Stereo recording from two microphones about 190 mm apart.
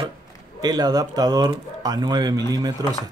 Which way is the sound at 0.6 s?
20° right (ahead or behind).